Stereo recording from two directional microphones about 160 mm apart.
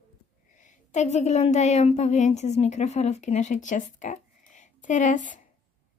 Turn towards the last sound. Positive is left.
turn(degrees=55)  # may be behind; listen again after turning